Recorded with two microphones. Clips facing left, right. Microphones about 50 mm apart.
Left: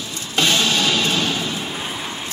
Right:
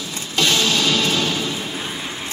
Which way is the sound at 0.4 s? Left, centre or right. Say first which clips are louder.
Even; centre.